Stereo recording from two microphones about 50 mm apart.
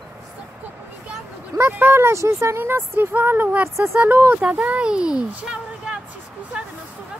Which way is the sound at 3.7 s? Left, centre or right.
Right.